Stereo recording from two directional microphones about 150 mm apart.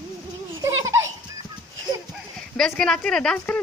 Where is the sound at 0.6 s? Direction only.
20° right (ahead or behind).